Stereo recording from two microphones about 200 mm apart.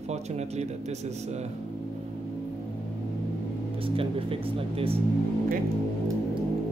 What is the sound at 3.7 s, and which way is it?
Speech, 25° right (ahead or behind).